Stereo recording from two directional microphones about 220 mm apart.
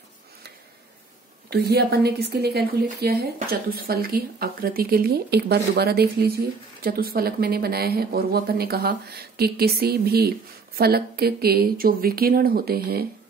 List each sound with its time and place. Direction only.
1.5 s a woman's voice: 45° right (ahead or behind)